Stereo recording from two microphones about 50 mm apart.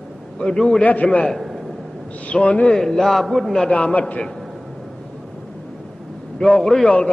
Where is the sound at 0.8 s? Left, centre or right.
Left.